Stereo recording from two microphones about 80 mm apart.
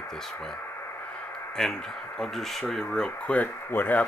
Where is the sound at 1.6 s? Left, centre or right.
Centre.